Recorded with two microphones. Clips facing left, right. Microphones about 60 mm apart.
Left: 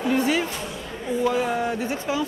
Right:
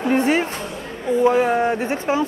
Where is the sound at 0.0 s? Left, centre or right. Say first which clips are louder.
Right 4 dB; right.